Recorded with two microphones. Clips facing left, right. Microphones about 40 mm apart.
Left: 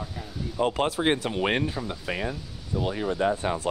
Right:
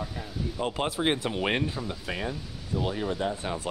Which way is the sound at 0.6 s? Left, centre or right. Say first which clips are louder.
Left 5 dB; centre.